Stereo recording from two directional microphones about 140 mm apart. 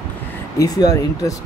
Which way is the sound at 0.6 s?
25° left (ahead or behind).